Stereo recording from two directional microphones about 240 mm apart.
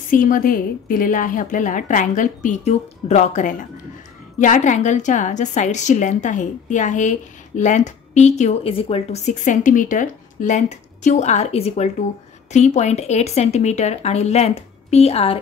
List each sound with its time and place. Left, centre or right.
0.1 s a woman's voice: left